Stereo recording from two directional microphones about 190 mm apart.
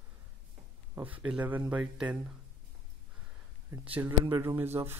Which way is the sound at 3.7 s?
10° right (ahead or behind).